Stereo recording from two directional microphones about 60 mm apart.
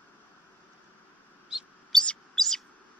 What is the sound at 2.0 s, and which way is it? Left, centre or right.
Bird, centre.